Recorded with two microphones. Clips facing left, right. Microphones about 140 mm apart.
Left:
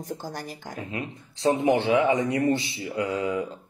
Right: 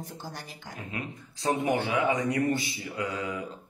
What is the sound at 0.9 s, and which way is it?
Speech, 25° left (ahead or behind).